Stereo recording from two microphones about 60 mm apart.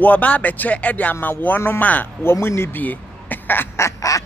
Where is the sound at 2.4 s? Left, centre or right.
Left.